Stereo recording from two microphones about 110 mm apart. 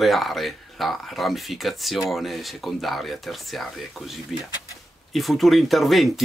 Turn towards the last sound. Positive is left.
turn(degrees=0)  # may be behind; listen again after turning